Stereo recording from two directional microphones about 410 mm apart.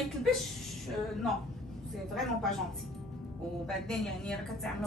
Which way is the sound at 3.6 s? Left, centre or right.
Centre.